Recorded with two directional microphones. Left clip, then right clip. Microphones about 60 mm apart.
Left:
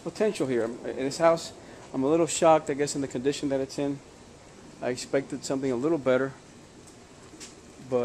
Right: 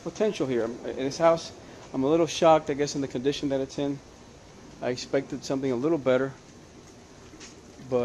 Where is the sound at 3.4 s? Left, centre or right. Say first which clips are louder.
Even; centre.